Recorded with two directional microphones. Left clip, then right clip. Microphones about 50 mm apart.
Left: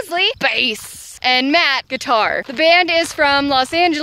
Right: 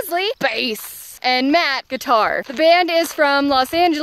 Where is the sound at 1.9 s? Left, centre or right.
Right.